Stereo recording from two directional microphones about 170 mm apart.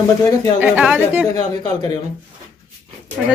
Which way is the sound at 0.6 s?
5° right (ahead or behind).